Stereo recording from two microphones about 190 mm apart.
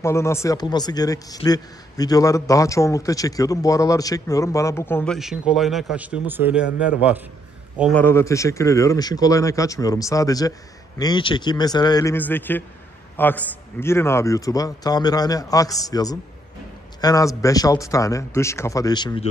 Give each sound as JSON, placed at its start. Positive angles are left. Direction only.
{"t": 0.0, "sound": "a man's voice", "side_deg": 15}
{"t": 7.9, "sound": "a man's voice", "side_deg": 10}